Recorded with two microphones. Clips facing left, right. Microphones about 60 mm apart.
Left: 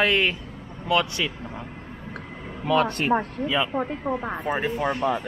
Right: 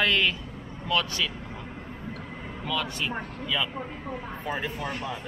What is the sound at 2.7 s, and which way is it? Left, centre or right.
Speech, left.